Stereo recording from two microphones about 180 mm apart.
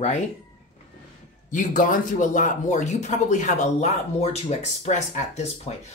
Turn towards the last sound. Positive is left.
turn(degrees=35)  # may be behind; listen again after turning